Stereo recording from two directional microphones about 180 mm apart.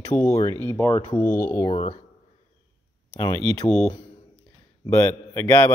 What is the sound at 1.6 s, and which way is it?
Speech, 35° left (ahead or behind).